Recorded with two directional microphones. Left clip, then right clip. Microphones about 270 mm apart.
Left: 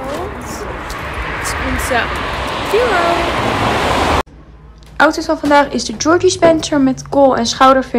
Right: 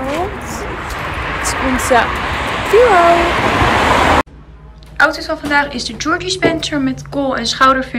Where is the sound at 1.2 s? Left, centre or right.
Centre.